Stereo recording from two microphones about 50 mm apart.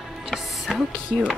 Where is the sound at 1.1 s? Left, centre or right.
Left.